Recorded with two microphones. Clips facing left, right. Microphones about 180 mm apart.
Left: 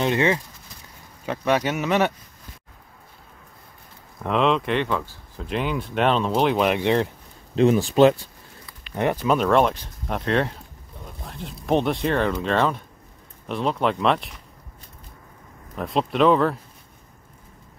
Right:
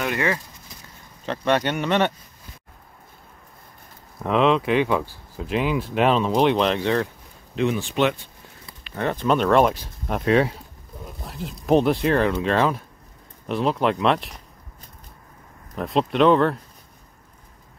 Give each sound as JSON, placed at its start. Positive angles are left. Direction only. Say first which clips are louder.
{"t": 0.0, "sound": "speech", "louder": "left 3 dB", "side_deg": 25}
{"t": 1.2, "sound": "speech", "louder": "even", "side_deg": 5}
{"t": 4.2, "sound": "speech", "louder": "right 2 dB", "side_deg": 0}
{"t": 7.5, "sound": "speech", "louder": "left 5 dB", "side_deg": 35}
{"t": 8.9, "sound": "speech", "louder": "left 2 dB", "side_deg": 15}
{"t": 9.2, "sound": "speech", "louder": "right 2 dB", "side_deg": 5}
{"t": 15.7, "sound": "speech", "louder": "right 2 dB", "side_deg": 0}